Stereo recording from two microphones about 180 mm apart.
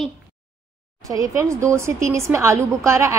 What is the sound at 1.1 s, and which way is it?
A woman's voice, 15° right (ahead or behind).